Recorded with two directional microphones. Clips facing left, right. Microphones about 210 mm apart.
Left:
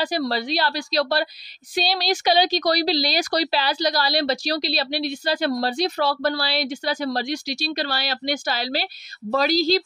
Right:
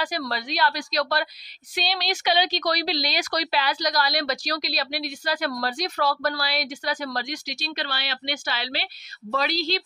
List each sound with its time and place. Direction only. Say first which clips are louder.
0.0 s speech: left 5 dB; 30° left (ahead or behind)